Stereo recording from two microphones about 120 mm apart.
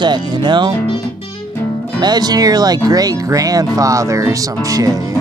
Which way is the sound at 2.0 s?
35° right (ahead or behind).